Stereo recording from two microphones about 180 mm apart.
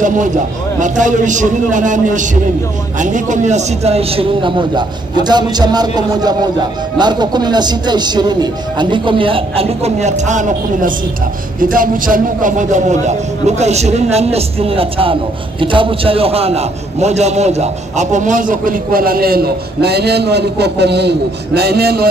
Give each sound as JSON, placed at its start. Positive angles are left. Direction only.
{"t": 0.0, "sound": "a man's voice", "side_deg": -45}